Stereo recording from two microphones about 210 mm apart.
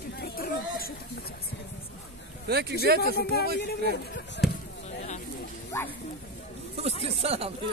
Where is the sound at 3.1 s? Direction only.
50° left (ahead or behind).